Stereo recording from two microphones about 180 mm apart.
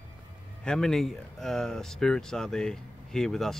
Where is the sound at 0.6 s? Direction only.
5° left (ahead or behind).